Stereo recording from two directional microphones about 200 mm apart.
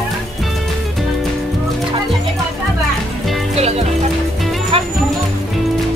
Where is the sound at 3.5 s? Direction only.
30° right (ahead or behind).